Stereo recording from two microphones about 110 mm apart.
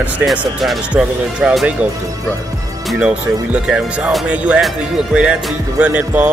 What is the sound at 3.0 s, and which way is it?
Speech, 10° right (ahead or behind).